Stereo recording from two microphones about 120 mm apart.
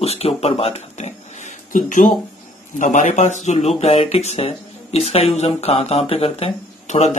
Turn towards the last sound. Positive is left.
turn(degrees=65)  # may be behind; listen again after turning